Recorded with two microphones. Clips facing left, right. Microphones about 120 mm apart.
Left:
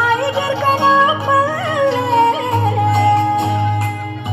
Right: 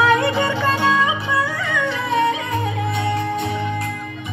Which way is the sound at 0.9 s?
35° left (ahead or behind).